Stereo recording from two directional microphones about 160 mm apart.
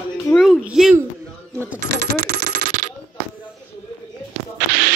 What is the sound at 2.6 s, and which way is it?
Coin, 55° right (ahead or behind).